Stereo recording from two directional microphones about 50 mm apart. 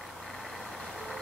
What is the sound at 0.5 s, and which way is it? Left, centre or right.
Vehicle, centre.